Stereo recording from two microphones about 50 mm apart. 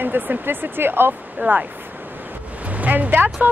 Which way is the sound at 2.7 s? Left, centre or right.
Right.